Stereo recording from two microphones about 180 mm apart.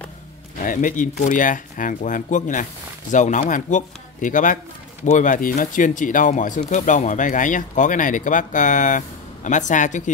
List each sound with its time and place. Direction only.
0.7 s speech: 45° left (ahead or behind)